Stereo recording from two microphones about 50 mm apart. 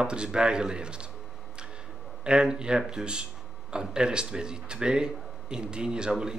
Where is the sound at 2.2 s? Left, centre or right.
Centre.